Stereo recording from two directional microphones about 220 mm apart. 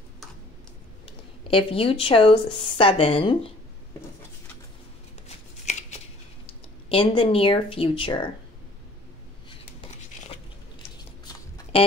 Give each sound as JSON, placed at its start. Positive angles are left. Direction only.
{"t": 1.0, "sound": "a woman's voice", "side_deg": 25}
{"t": 5.7, "sound": "shuffling cards", "side_deg": 30}
{"t": 6.9, "sound": "speech", "side_deg": 25}
{"t": 11.2, "sound": "a sound", "side_deg": 15}